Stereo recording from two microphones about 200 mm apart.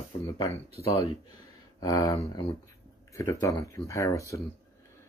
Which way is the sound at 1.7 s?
15° left (ahead or behind).